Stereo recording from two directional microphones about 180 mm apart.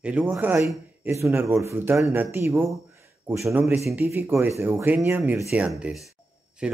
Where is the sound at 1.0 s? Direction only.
15° right (ahead or behind).